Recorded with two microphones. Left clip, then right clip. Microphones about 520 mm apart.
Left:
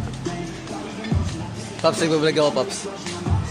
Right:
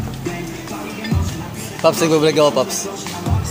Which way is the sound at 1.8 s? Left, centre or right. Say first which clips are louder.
Right 5 dB; left.